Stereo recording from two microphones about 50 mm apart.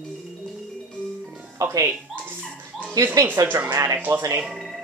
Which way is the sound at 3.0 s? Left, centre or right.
Right.